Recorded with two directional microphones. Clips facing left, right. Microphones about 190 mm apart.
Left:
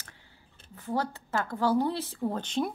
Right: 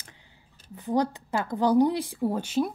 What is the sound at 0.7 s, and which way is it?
A woman's voice, 15° right (ahead or behind).